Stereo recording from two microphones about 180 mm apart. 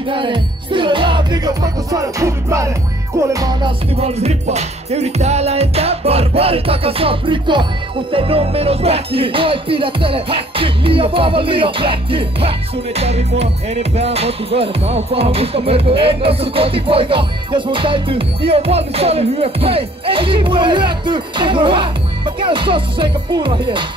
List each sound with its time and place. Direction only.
0.1 s music: 25° right (ahead or behind)
3.9 s music: 35° right (ahead or behind)